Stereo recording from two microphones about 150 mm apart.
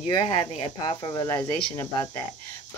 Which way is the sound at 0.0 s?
35° left (ahead or behind).